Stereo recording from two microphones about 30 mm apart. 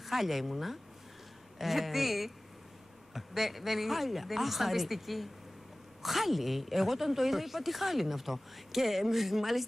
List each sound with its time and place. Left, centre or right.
0.0 s speech: centre